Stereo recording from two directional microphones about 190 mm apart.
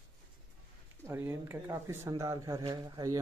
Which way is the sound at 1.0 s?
15° right (ahead or behind).